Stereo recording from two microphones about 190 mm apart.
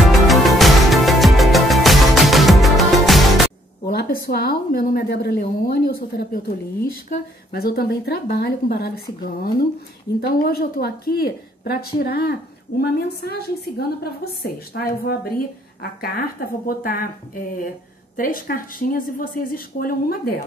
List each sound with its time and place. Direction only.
0.0 s music: centre (ahead or behind)
3.8 s a woman's voice: 55° left (ahead or behind)
18.1 s speech: 45° left (ahead or behind)